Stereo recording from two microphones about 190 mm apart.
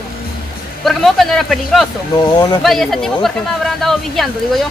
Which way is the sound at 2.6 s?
Centre (ahead or behind).